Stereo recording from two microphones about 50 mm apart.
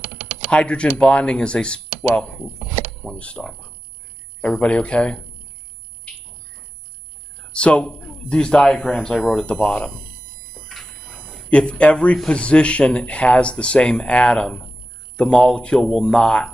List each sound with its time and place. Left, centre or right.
0.5 s speech: left
3.0 s speech: left
7.3 s a sound: centre
7.8 s speech: centre
9.5 s speech: left
10.5 s a sound: centre
11.5 s speech: left